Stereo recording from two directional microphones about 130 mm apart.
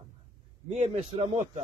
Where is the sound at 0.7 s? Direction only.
55° right (ahead or behind).